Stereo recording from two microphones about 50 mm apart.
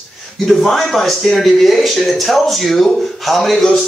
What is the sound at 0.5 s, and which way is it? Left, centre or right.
Speech, centre.